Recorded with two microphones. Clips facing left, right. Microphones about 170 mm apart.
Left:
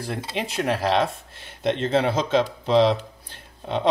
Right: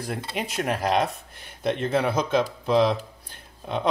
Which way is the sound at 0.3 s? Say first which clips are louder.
Left 3 dB; 25° left (ahead or behind).